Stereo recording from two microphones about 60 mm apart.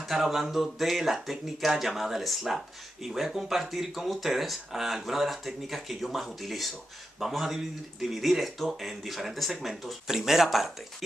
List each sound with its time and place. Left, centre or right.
0.1 s speech: centre